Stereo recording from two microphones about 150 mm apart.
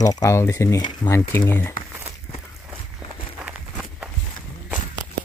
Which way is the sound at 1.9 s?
15° right (ahead or behind).